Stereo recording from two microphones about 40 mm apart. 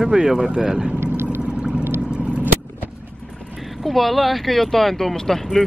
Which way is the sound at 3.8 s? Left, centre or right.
Centre.